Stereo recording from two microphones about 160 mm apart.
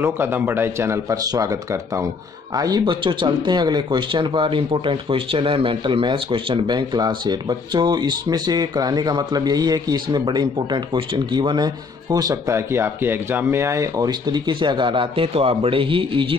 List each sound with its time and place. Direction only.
0.0 s speech: 15° right (ahead or behind); by 16.3 s 30° right (ahead or behind)